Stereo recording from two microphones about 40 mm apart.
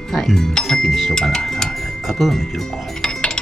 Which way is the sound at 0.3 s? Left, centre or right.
Centre.